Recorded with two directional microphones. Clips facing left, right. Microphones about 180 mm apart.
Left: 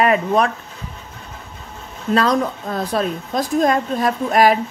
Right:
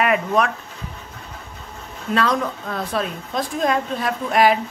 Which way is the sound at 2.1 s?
35° left (ahead or behind).